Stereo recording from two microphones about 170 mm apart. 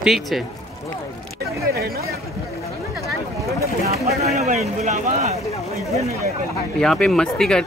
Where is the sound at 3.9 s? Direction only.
40° right (ahead or behind).